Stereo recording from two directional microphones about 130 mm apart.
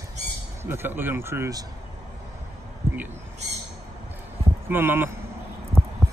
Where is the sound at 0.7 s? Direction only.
15° right (ahead or behind).